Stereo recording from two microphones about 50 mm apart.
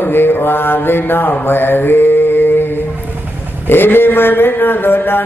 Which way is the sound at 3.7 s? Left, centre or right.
Left.